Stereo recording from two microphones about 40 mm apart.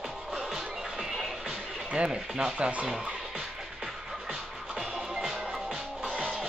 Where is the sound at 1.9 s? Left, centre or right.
Right.